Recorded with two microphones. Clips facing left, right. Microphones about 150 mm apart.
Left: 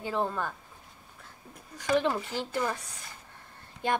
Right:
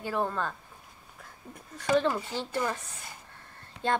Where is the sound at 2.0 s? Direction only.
20° left (ahead or behind).